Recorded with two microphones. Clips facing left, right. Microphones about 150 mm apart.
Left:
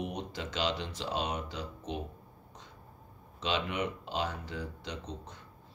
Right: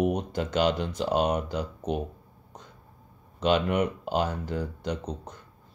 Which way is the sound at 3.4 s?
50° right (ahead or behind).